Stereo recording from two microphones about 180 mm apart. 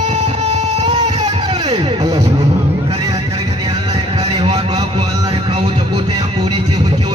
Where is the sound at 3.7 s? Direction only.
25° right (ahead or behind).